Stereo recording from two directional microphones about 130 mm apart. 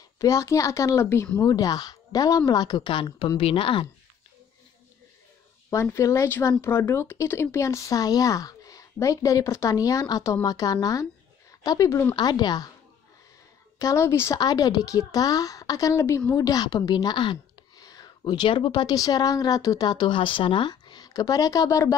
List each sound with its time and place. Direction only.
0.2 s speech: 25° left (ahead or behind); by 3.8 s 40° left (ahead or behind)
5.7 s speech: 25° left (ahead or behind)
13.7 s speech: 25° left (ahead or behind)
14.4 s speech: 30° left (ahead or behind)